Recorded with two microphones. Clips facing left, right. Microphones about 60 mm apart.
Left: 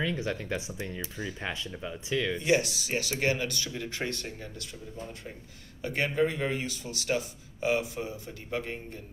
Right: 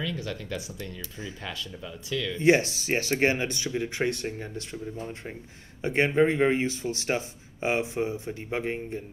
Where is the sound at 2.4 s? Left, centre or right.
Right.